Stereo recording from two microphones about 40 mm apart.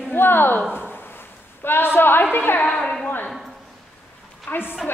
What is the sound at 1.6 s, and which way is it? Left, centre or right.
Speech, left.